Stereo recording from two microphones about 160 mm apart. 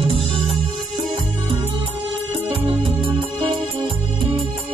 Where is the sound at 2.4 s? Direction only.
35° right (ahead or behind).